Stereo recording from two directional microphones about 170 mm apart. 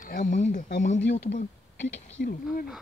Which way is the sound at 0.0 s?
50° left (ahead or behind).